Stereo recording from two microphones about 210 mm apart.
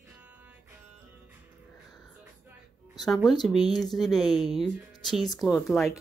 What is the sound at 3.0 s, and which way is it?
Speech, centre (ahead or behind).